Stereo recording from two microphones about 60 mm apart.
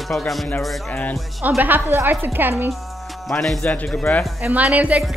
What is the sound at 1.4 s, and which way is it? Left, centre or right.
A woman's voice, right.